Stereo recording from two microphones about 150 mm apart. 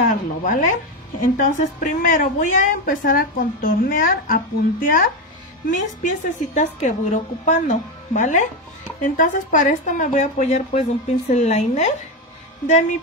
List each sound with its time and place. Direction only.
0.1 s a woman's voice: 60° left (ahead or behind)
1.2 s a woman's voice: 70° left (ahead or behind)
5.7 s a woman's voice: 55° left (ahead or behind)